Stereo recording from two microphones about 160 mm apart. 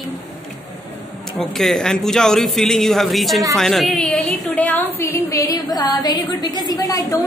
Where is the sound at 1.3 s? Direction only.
Centre (ahead or behind); by 7.2 s 20° left (ahead or behind).